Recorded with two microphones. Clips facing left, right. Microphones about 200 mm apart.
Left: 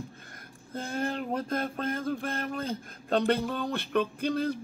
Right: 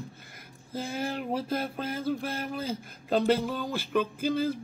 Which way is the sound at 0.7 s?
5° right (ahead or behind).